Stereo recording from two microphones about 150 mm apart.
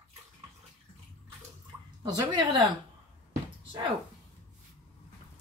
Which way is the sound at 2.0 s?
25° right (ahead or behind).